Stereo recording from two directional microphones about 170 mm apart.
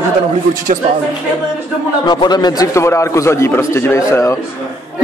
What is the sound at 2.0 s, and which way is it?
A man's voice, 25° left (ahead or behind).